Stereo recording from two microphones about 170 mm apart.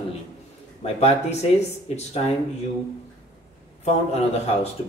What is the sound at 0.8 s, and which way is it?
Speech, 40° left (ahead or behind).